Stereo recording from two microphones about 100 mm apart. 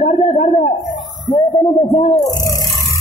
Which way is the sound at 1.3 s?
45° left (ahead or behind).